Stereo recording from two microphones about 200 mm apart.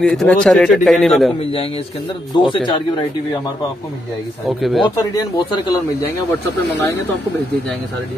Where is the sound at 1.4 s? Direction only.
30° left (ahead or behind).